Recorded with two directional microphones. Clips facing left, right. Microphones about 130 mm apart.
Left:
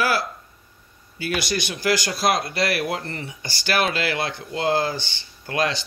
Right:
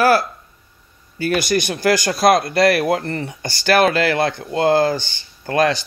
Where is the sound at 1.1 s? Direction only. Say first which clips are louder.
Right 7 dB; 45° right (ahead or behind).